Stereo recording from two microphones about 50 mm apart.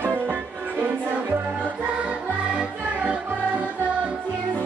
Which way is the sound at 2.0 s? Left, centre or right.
Right.